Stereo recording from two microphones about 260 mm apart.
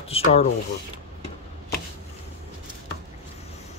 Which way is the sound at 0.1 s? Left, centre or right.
Left.